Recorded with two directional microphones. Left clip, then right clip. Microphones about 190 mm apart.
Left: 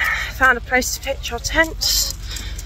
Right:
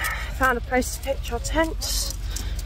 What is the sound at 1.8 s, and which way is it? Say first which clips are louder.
Speech: left 10 dB; 15° right (ahead or behind).